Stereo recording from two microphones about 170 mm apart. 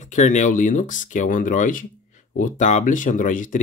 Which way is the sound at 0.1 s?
45° left (ahead or behind).